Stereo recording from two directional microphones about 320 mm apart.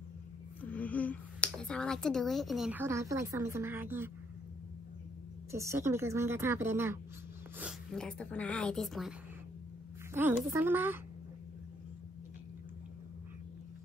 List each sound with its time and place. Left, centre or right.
0.7 s speech: centre
5.5 s a woman's voice: centre
10.1 s a woman's voice: centre